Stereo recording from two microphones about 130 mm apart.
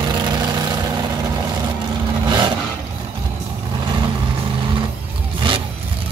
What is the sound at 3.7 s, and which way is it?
Vehicle, 35° right (ahead or behind).